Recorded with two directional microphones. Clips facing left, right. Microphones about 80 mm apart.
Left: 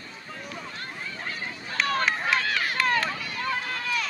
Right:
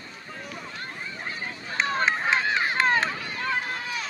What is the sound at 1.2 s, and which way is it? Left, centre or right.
Run, right.